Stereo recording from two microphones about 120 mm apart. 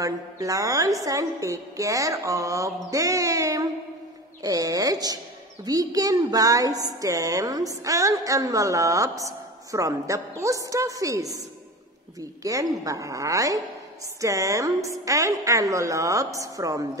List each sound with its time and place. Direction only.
0.0 s a woman's voice: 30° right (ahead or behind)
12.4 s a woman's voice: 30° right (ahead or behind)